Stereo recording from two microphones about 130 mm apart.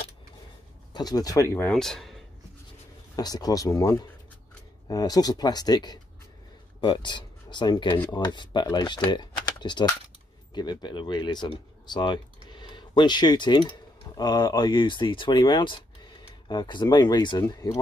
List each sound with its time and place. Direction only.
0.9 s speech: 30° left (ahead or behind)
1.7 s speech: 5° left (ahead or behind)
3.2 s speech: 30° left (ahead or behind)